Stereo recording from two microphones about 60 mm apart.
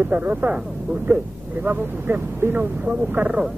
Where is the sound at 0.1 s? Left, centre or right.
Right.